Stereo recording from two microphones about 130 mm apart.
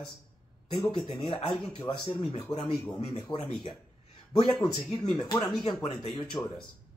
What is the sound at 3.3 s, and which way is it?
Speech, 35° left (ahead or behind).